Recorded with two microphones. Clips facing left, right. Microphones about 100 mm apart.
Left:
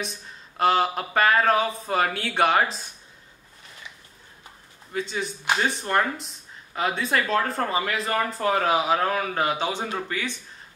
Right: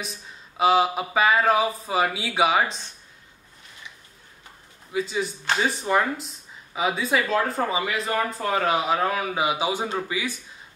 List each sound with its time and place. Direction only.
0.0 s speech: centre (ahead or behind)
4.9 s speech: 5° right (ahead or behind)